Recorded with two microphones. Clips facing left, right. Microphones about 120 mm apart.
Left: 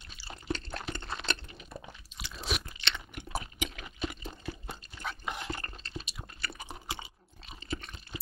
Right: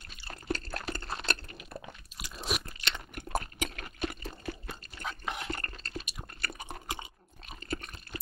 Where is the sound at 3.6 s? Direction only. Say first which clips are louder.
Right 1 dB; 50° right (ahead or behind).